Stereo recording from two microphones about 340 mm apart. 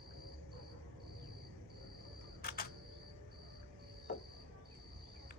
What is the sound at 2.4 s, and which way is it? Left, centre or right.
Camera, left.